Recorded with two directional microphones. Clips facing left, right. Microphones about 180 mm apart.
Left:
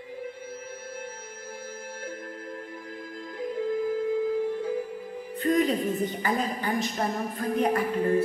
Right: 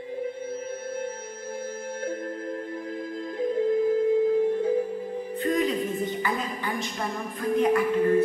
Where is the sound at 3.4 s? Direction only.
25° right (ahead or behind).